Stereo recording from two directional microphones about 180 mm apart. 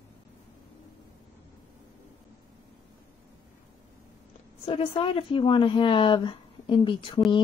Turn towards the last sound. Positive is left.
turn(degrees=30)  # may be behind; listen again after turning